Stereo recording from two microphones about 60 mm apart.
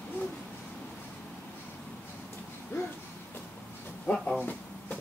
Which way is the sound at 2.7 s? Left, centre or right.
Left.